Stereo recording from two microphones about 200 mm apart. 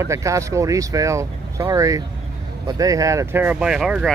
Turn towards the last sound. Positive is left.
turn(degrees=-5)  # may be behind; listen again after turning